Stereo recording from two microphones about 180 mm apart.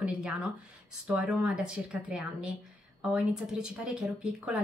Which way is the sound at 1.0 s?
5° right (ahead or behind).